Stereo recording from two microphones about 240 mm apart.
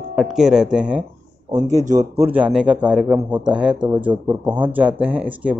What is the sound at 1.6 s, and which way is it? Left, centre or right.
Speech, right.